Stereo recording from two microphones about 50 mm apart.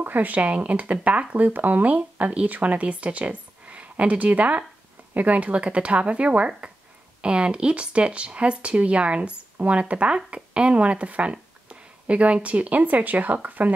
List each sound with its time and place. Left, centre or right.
0.0 s speech: right